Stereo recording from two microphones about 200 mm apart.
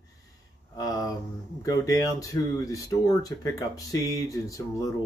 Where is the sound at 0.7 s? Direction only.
20° left (ahead or behind).